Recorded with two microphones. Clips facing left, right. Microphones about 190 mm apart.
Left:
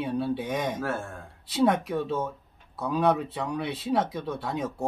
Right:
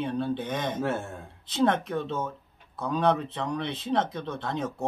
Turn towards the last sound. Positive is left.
turn(degrees=10)  # may be behind; listen again after turning